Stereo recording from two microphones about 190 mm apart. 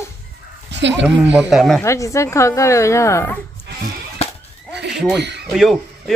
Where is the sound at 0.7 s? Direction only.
70° right (ahead or behind).